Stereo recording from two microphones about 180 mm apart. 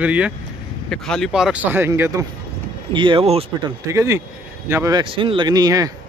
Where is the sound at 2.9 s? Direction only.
25° right (ahead or behind).